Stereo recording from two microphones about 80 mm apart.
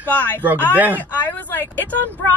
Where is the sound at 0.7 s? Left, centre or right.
Right.